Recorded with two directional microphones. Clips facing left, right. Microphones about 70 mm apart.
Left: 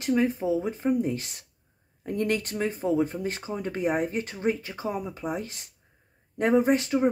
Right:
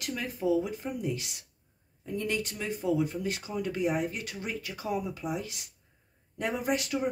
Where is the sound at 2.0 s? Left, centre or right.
Left.